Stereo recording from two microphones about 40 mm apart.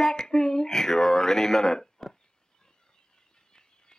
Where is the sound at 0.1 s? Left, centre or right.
Centre.